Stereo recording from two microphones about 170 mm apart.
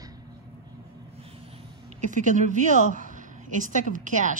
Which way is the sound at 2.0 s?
45° right (ahead or behind).